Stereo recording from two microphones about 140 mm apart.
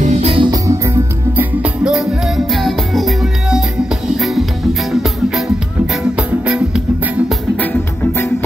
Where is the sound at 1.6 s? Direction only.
5° right (ahead or behind).